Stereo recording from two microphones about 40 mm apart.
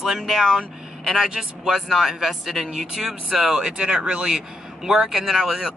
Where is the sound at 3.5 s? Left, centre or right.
Centre.